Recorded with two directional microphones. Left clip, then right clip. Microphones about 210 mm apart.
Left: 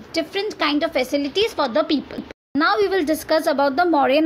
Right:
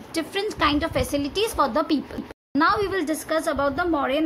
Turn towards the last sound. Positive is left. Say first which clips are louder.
# left 6 dB
turn(degrees=20)  # may be behind; listen again after turning